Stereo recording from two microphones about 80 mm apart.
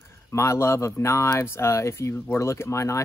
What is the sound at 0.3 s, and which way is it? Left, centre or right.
Speech, left.